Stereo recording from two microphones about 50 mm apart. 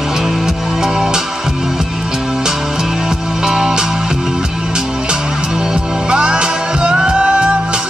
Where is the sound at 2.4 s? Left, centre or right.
Centre.